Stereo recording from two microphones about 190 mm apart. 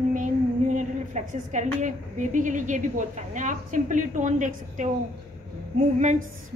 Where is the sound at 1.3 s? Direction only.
40° right (ahead or behind).